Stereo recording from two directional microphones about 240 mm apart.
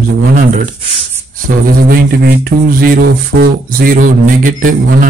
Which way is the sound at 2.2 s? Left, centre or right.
Right.